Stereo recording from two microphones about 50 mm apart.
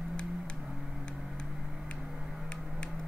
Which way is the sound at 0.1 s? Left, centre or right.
Centre.